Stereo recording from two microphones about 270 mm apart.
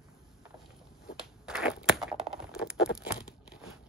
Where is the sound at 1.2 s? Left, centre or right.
Centre.